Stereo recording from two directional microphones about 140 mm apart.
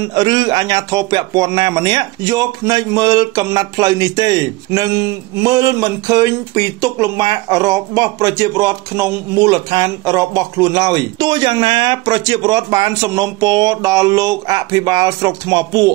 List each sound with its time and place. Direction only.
0.1 s a man's voice: 30° right (ahead or behind)